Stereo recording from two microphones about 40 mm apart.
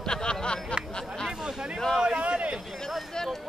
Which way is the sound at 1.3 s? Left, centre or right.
Centre.